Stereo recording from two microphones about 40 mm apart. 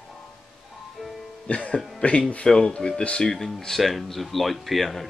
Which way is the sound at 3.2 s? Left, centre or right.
Centre.